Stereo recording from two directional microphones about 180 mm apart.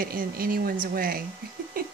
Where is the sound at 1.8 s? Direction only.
50° right (ahead or behind).